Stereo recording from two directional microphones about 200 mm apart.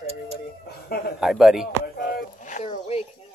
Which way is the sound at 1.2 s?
Centre (ahead or behind).